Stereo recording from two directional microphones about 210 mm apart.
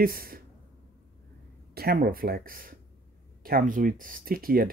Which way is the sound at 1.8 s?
45° right (ahead or behind).